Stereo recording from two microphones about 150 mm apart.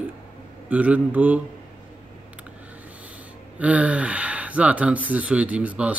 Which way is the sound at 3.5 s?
10° right (ahead or behind).